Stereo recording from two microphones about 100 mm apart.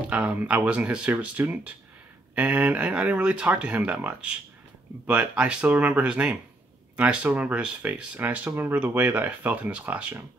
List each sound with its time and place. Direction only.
0.1 s speech: 10° right (ahead or behind)